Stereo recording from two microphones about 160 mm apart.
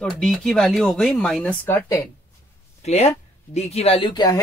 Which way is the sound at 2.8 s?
45° left (ahead or behind).